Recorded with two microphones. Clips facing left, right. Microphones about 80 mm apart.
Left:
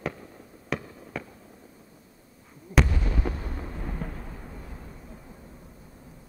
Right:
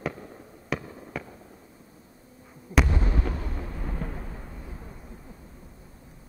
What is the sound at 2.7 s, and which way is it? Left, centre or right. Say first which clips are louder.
Artillery fire: even; right.